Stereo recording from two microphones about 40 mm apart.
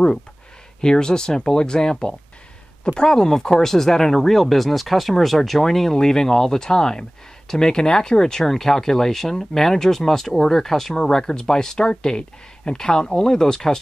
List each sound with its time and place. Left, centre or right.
0.7 s speech: centre